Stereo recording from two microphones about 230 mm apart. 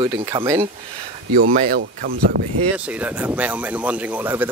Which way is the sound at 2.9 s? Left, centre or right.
Centre.